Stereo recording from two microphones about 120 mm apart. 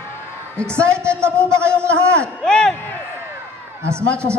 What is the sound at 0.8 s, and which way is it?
A woman's voice, 20° right (ahead or behind).